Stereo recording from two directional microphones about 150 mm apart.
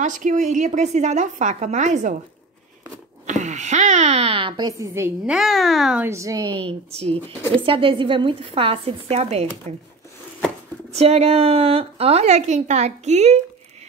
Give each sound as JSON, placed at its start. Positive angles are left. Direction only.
{"t": 0.0, "sound": "a woman's voice", "side_deg": -55}
{"t": 3.3, "sound": "speech", "side_deg": -50}
{"t": 5.3, "sound": "a child's voice", "side_deg": 0}
{"t": 6.0, "sound": "a woman's voice", "side_deg": -20}
{"t": 7.0, "sound": "a woman's voice", "side_deg": -40}
{"t": 10.9, "sound": "a woman's voice", "side_deg": -45}